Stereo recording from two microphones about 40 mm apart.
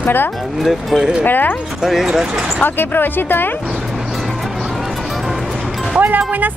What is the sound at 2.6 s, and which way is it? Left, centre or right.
Speech, left.